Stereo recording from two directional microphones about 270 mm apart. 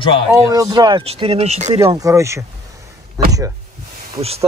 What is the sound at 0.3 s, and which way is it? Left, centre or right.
Speech, centre.